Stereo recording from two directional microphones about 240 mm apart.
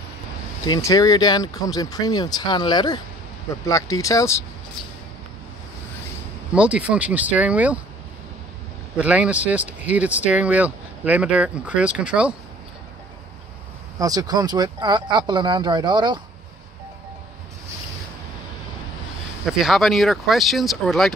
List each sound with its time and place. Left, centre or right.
0.7 s speech: centre
6.5 s speech: centre
8.9 s speech: centre
13.9 s speech: centre
19.4 s speech: centre